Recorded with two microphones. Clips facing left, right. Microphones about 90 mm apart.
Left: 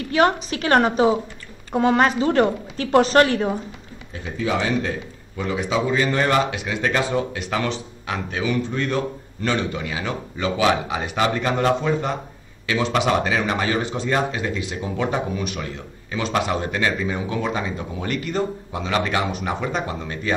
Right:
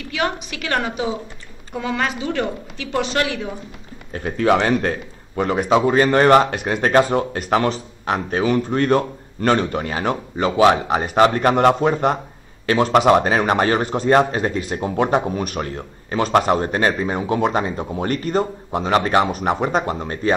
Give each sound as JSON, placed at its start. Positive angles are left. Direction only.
{"t": 0.1, "sound": "a woman's voice", "side_deg": 35}
{"t": 4.1, "sound": "a man's voice", "side_deg": -60}